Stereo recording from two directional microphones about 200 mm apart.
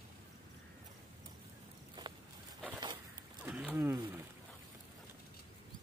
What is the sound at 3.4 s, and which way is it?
Wild animals, 5° right (ahead or behind).